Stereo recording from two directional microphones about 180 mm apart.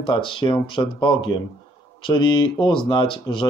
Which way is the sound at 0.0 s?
25° left (ahead or behind).